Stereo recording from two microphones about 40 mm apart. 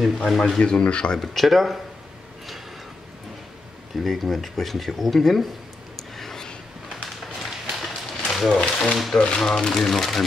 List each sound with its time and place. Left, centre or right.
0.0 s speech: centre
0.6 s speech: left
1.2 s speech: centre
3.9 s speech: centre
6.1 s a sound: centre
7.3 s a sound: centre
8.5 s speech: left
8.9 s speech: centre
9.2 s speech: centre
9.8 s speech: centre